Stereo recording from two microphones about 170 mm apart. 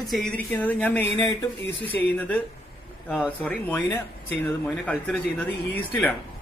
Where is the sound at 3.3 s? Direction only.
10° left (ahead or behind).